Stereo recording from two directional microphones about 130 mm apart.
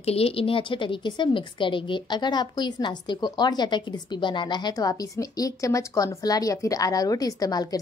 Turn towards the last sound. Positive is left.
turn(degrees=30)  # may be behind; listen again after turning